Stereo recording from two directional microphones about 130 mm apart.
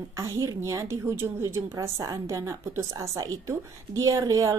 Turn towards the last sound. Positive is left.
turn(degrees=-25)  # may be behind; listen again after turning